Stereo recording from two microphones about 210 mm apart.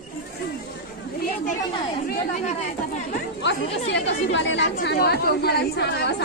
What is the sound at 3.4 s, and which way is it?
Speech, 55° left (ahead or behind).